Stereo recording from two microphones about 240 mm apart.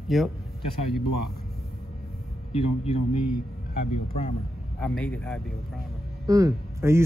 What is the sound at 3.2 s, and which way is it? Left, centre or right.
Speech, left.